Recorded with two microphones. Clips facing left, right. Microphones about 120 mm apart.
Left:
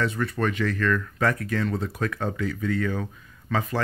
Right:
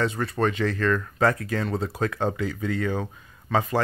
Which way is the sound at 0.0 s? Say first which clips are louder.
Right 1 dB; 30° right (ahead or behind).